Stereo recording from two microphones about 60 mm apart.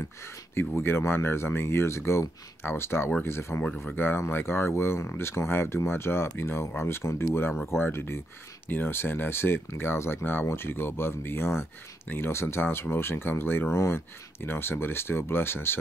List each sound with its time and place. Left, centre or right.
0.6 s speech: left
2.6 s speech: left